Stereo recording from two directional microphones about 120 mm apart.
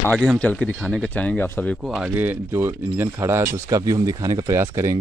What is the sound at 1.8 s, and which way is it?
Speech, 5° right (ahead or behind).